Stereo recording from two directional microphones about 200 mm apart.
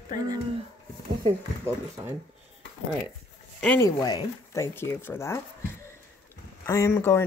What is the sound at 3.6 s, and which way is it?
Speech, 5° left (ahead or behind).